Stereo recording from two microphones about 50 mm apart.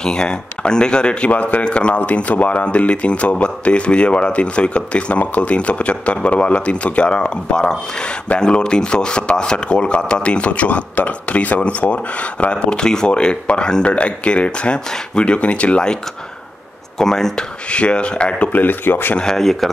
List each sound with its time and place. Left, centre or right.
0.0 s speech: centre
1.3 s speech: left
17.0 s speech: centre
17.6 s speech: left
18.5 s speech: left
19.1 s speech: centre